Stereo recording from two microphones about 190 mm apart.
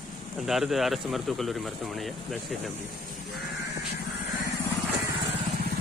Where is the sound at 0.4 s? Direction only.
Centre (ahead or behind).